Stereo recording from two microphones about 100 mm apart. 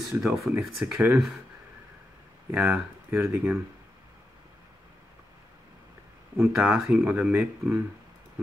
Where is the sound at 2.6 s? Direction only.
25° right (ahead or behind).